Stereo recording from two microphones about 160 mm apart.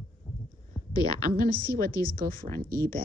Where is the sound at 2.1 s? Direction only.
65° right (ahead or behind).